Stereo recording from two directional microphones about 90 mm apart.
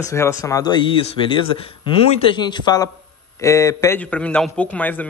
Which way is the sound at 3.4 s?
35° left (ahead or behind).